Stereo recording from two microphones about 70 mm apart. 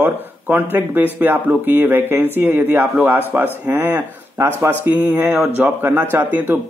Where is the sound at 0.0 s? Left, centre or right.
Right.